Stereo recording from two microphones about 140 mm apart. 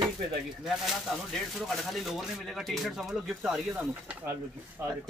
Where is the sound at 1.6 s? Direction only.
Centre (ahead or behind).